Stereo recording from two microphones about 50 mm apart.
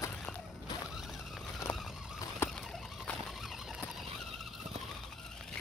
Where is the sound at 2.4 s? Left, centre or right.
Left.